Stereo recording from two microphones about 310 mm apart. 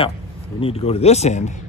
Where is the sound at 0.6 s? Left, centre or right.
Centre.